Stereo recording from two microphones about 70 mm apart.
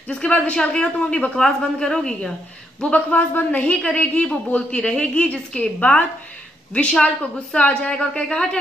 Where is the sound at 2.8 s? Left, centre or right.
Left.